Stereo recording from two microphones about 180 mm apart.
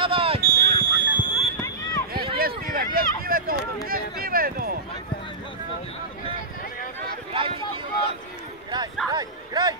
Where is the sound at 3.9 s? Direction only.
55° right (ahead or behind).